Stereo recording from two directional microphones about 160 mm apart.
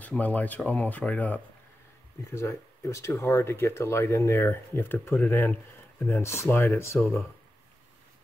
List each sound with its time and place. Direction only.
0.0 s speech: 10° left (ahead or behind)